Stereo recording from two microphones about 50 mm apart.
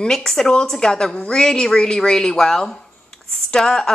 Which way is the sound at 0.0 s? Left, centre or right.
Centre.